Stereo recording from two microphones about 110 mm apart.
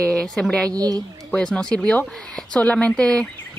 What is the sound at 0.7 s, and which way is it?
Speech, 35° right (ahead or behind).